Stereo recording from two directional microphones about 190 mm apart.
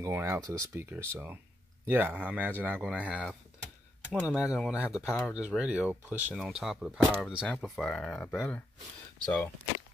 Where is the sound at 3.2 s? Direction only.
5° left (ahead or behind).